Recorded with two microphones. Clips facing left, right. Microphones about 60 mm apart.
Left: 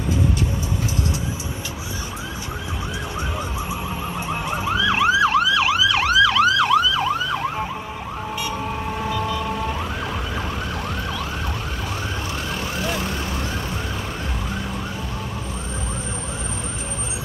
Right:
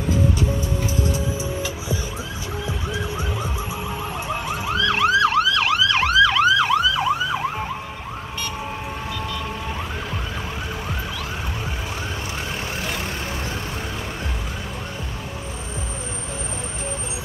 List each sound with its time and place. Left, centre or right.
4.6 s emergency vehicle: centre